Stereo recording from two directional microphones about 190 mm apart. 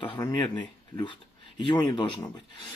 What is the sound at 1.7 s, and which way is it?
Speech, 25° left (ahead or behind).